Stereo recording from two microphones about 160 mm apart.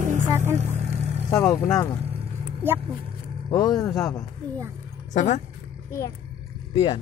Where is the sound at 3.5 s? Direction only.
25° left (ahead or behind).